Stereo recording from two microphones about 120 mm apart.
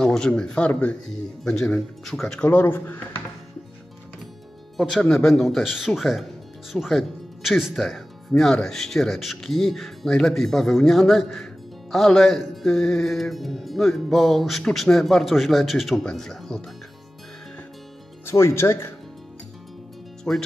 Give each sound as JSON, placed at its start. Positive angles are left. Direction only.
{"t": 0.0, "sound": "speech", "side_deg": 5}
{"t": 4.7, "sound": "speech", "side_deg": 0}
{"t": 18.2, "sound": "speech", "side_deg": 20}
{"t": 20.3, "sound": "speech", "side_deg": 15}